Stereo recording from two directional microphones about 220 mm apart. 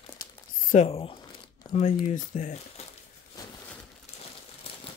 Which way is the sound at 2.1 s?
30° left (ahead or behind).